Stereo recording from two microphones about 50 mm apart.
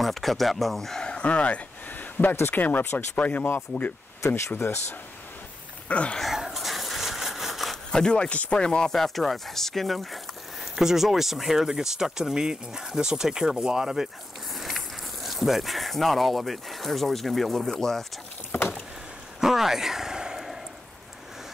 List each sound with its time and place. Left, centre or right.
0.0 s speech: centre
1.0 s a sound: left
2.5 s speech: left
4.2 s speech: left
5.9 s speech: left
6.3 s a sound: centre
7.7 s speech: centre
8.4 s chopping: centre
8.9 s speech: centre
15.2 s speech: centre
18.5 s vehicle: left
19.4 s a sound: centre